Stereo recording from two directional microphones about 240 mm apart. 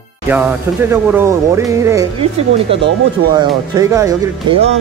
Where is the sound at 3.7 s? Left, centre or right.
Centre.